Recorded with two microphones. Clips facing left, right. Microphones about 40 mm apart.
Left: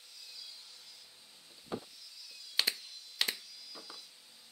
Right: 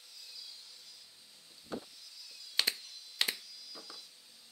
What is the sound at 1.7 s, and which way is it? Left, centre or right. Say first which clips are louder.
Wood: left 1 dB; centre.